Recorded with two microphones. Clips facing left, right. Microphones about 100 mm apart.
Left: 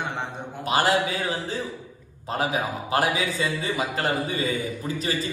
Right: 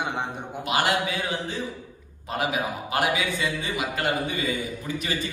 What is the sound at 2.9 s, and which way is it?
A man's voice, 35° left (ahead or behind).